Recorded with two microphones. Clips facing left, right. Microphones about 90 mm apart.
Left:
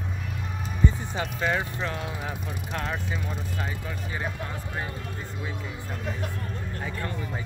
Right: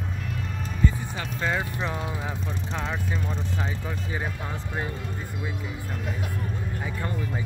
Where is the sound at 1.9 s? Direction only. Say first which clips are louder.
Right 2 dB; 20° right (ahead or behind).